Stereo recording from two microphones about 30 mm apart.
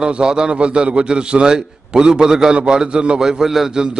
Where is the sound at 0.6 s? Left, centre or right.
Right; by 2.5 s centre.